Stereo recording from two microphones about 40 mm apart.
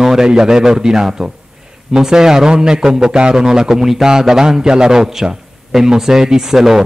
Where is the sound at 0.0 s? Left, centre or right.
Centre.